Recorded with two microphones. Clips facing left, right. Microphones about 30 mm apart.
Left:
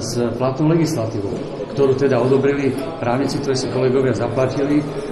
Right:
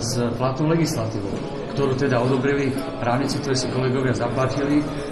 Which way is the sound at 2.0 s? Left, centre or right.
Left.